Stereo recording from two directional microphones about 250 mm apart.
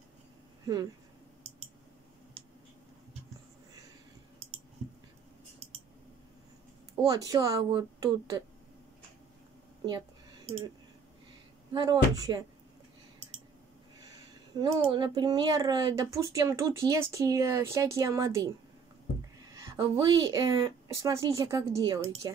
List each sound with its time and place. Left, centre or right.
2.4 s finger snapping: right
7.0 s speech: centre
9.8 s a sound: right
11.7 s speech: centre
14.6 s speech: centre
19.5 s speech: centre